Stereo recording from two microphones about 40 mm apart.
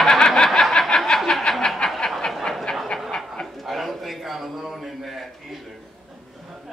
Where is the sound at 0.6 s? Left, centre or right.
Centre.